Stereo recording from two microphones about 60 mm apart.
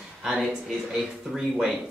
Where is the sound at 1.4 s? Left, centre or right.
Centre.